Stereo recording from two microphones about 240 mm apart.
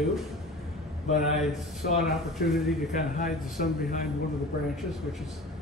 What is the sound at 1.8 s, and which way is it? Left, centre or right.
A man's voice, left.